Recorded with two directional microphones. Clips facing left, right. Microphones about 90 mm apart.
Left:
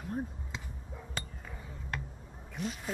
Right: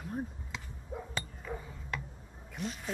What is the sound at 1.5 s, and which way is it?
Dog, 55° right (ahead or behind).